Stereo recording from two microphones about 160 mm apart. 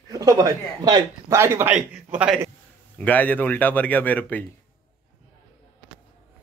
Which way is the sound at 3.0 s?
10° left (ahead or behind).